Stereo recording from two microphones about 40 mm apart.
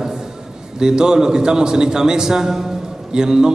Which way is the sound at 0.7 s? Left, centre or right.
Centre.